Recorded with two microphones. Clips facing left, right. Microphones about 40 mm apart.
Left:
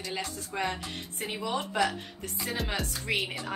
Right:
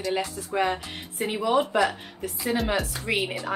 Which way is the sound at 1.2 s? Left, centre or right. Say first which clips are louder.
Right 9 dB; centre.